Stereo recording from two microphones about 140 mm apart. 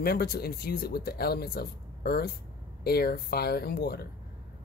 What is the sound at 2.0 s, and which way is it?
Speech, 90° left.